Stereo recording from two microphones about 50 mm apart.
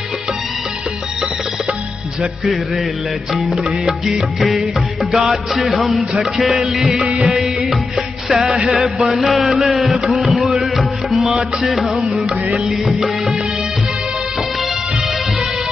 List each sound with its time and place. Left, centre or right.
2.4 s music: centre
8.9 s a sound: centre
11.3 s music: centre